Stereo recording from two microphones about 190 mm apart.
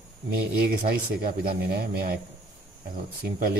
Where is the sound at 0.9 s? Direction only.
50° right (ahead or behind).